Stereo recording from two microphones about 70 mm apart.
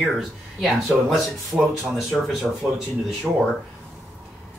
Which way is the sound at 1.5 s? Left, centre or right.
Right.